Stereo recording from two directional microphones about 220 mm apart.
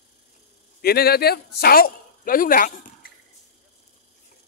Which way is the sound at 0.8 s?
45° left (ahead or behind).